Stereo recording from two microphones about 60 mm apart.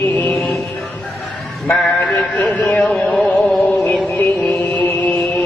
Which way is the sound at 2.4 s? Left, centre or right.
Left.